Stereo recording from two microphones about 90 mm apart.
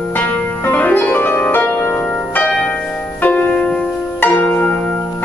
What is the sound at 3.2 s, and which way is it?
Music, 20° left (ahead or behind).